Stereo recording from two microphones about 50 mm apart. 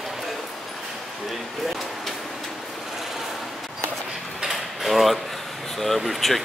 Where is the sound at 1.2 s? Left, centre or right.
Centre.